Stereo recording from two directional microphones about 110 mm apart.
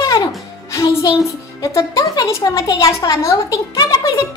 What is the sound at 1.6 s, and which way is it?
Music, 30° left (ahead or behind).